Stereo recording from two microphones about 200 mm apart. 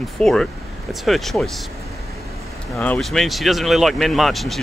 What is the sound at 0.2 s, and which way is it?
Speech, 5° left (ahead or behind).